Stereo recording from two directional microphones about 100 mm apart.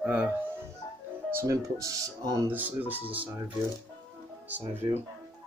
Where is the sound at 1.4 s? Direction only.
35° right (ahead or behind).